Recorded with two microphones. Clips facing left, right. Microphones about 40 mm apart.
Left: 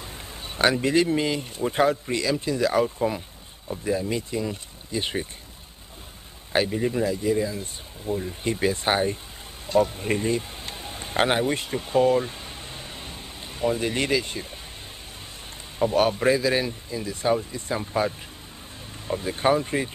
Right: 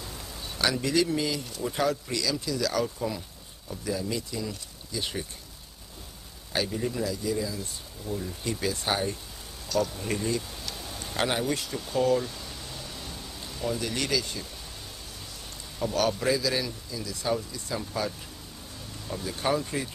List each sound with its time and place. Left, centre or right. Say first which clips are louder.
0.0 s speech: left 2 dB; left
6.5 s speech: left 6 dB; left
15.8 s speech: left 6 dB; left